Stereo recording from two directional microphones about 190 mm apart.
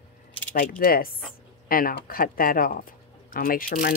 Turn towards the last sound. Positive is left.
turn(degrees=50)  # may be behind; listen again after turning